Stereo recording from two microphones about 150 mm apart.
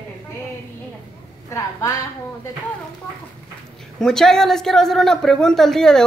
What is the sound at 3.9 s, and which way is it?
Speech, 5° left (ahead or behind).